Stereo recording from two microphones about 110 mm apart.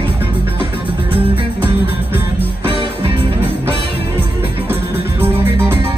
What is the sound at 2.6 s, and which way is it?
Music, 55° right (ahead or behind).